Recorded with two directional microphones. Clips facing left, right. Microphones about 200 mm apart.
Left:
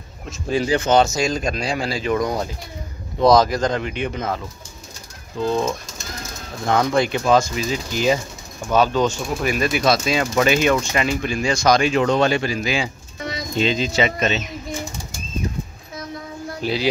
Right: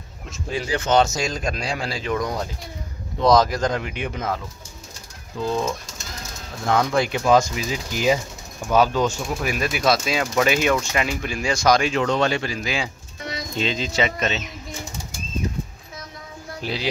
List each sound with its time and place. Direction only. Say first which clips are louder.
0.5 s speech: left 6 dB; 30° left (ahead or behind)
0.7 s speech: left 1 dB; 10° left (ahead or behind)
6.7 s speech: left 2 dB; 5° right (ahead or behind)
11.9 s speech: left 3 dB; 15° left (ahead or behind)
16.6 s speech: left 5 dB; centre (ahead or behind)